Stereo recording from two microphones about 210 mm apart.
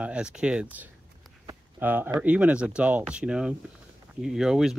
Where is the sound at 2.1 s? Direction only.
5° right (ahead or behind).